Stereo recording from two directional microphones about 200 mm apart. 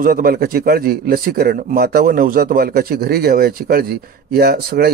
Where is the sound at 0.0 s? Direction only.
50° right (ahead or behind).